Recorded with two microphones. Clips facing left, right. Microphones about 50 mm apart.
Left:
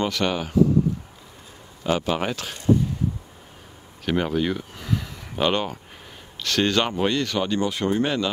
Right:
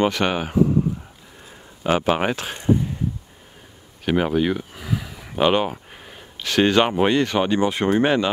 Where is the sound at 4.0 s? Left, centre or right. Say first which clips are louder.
Right 3 dB; centre.